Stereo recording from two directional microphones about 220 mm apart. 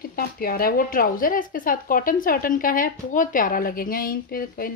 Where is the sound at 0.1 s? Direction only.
40° left (ahead or behind).